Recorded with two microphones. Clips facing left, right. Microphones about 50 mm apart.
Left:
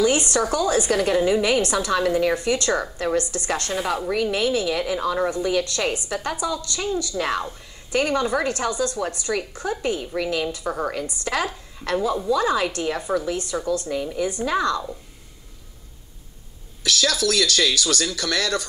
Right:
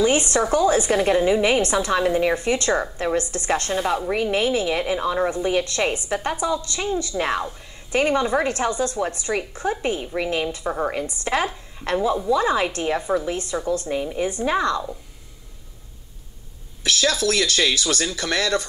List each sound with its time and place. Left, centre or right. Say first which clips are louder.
0.0 s a woman's voice: right 1 dB; right
16.8 s a woman's voice: right 1 dB; right